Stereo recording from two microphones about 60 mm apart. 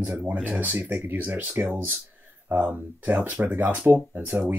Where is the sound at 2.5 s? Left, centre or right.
Right.